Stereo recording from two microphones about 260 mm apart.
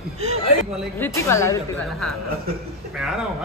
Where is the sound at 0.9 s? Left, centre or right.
Centre.